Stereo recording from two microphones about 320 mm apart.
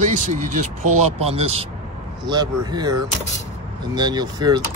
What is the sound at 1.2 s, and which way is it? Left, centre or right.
Speech, centre.